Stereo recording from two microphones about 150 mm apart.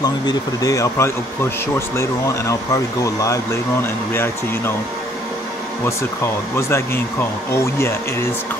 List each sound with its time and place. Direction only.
0.0 s speech: 25° left (ahead or behind)
6.5 s speech: 15° left (ahead or behind)